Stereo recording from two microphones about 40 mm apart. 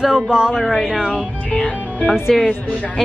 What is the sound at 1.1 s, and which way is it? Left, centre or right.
Speech, left.